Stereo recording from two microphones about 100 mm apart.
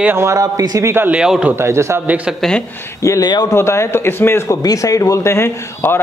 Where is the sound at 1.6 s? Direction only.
30° right (ahead or behind).